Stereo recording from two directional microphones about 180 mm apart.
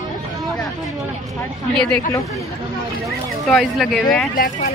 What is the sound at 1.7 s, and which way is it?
Speech, 5° left (ahead or behind).